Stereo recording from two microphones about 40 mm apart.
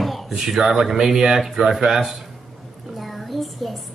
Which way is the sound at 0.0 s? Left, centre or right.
Centre.